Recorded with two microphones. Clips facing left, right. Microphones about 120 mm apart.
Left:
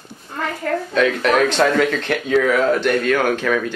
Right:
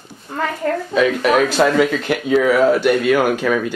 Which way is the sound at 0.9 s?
5° right (ahead or behind).